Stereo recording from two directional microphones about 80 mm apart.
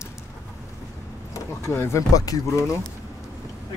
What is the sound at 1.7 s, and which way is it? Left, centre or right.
Speech, left.